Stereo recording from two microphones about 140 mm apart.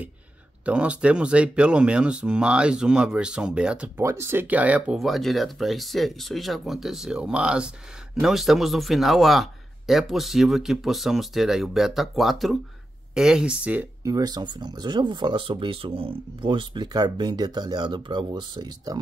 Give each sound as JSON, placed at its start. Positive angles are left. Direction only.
{"t": 0.7, "sound": "speech", "side_deg": -10}
{"t": 4.0, "sound": "speech", "side_deg": -20}
{"t": 14.0, "sound": "speech", "side_deg": -25}